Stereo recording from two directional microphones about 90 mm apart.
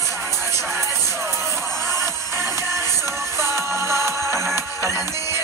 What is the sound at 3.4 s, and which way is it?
Music, 30° right (ahead or behind).